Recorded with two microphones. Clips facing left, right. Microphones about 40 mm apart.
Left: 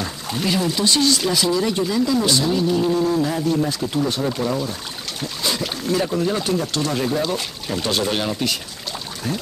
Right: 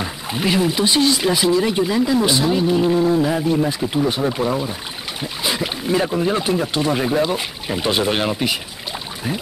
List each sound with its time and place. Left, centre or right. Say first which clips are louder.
0.0 s speech: right 2 dB; right